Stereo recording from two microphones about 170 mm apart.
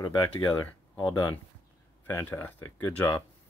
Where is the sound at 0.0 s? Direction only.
25° left (ahead or behind).